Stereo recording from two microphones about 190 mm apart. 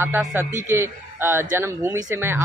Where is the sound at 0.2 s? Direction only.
10° right (ahead or behind).